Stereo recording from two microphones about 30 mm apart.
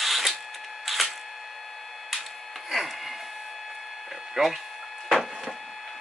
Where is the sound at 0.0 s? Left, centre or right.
Centre.